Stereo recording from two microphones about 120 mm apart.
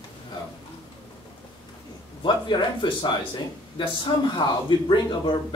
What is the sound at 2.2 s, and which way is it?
Speech, 40° left (ahead or behind).